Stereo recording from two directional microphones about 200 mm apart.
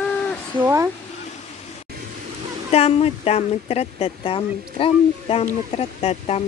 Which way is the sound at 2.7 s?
30° left (ahead or behind).